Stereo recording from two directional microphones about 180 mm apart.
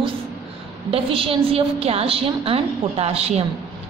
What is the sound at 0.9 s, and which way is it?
A woman's voice, 30° right (ahead or behind).